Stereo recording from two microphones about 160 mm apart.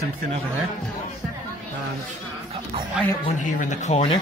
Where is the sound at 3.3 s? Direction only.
50° left (ahead or behind).